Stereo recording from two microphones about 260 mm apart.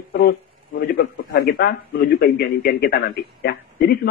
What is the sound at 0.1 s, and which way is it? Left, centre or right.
A man's voice, left.